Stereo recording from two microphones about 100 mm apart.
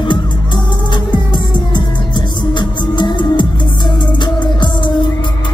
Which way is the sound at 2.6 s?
50° left (ahead or behind).